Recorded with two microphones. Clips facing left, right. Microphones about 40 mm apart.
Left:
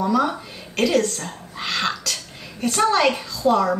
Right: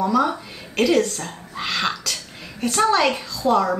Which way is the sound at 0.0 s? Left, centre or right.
Centre.